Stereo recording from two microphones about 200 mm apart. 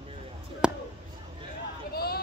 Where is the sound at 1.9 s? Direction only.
50° left (ahead or behind).